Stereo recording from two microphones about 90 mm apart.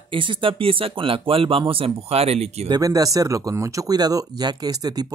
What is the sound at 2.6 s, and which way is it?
Speech, 45° right (ahead or behind).